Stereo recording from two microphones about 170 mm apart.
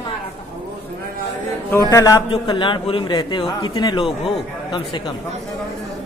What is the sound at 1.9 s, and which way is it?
Speech, 20° left (ahead or behind).